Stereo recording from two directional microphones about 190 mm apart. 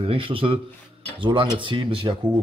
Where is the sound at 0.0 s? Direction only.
30° right (ahead or behind).